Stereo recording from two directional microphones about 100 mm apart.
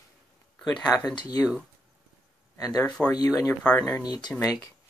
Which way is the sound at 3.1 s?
35° left (ahead or behind).